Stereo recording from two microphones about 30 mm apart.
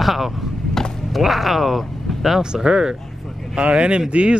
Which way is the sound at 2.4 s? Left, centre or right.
Right.